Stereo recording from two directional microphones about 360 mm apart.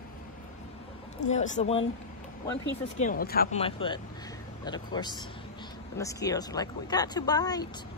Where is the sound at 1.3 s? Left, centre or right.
Centre.